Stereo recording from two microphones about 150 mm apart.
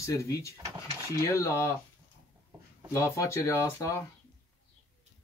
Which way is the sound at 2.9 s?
20° left (ahead or behind).